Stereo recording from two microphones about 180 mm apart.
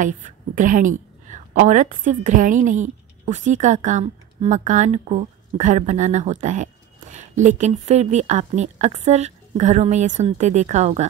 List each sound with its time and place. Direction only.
0.0 s a woman's voice: 45° right (ahead or behind)